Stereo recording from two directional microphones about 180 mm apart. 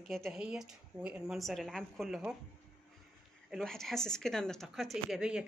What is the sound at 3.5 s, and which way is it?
A woman's voice, 5° left (ahead or behind).